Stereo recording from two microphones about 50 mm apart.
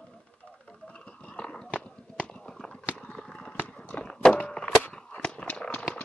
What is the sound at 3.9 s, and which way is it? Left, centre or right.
Walk, centre.